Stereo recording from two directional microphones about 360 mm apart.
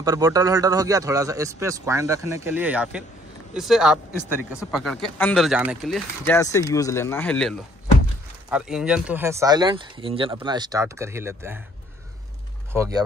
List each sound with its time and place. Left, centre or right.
0.0 s a man's voice: centre
12.7 s speech: centre